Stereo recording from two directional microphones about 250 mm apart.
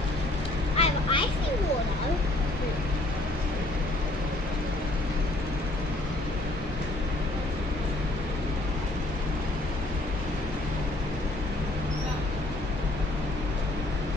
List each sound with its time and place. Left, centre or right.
0.7 s vehicle: left